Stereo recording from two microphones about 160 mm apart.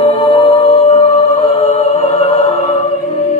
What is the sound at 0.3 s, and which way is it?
Music, 35° left (ahead or behind).